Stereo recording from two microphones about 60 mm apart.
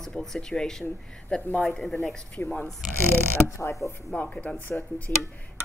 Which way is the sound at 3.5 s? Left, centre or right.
Left.